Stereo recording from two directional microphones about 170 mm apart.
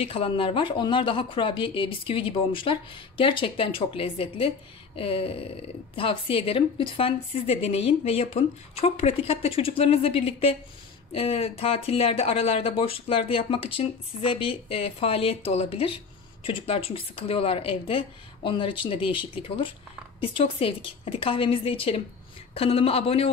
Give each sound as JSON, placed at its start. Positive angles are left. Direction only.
{"t": 0.0, "sound": "speech", "side_deg": 35}